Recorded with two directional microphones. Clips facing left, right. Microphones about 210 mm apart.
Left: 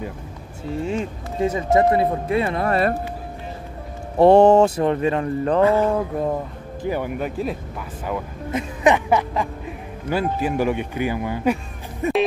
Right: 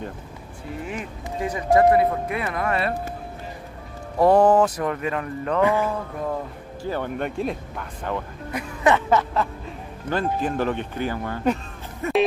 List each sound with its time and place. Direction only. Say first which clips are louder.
0.7 s speech: left 8 dB; 25° left (ahead or behind)
4.2 s speech: left 4 dB; 25° left (ahead or behind)
6.8 s speech: left 2 dB; 10° left (ahead or behind)
8.5 s speech: left 3 dB; 20° left (ahead or behind)
12.0 s music: left 2 dB; 15° left (ahead or behind)